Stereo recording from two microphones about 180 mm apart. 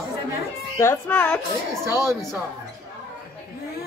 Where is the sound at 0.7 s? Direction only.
10° left (ahead or behind).